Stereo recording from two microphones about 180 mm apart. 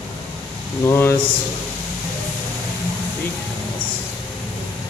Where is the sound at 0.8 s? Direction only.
15° left (ahead or behind).